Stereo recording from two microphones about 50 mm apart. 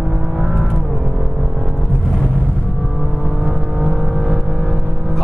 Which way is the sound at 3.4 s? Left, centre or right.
Centre.